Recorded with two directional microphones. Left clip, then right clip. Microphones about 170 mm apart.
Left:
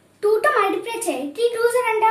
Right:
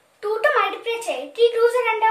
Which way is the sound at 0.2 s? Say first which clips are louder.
Left 2 dB; 15° right (ahead or behind).